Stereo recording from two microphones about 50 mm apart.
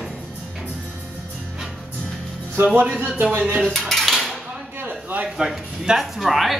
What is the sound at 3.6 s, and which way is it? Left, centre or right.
Dishes, centre.